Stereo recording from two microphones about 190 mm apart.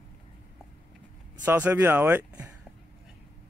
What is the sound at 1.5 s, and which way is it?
Speech, 10° right (ahead or behind).